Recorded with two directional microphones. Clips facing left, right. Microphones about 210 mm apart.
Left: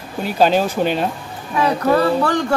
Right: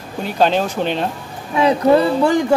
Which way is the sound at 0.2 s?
5° left (ahead or behind).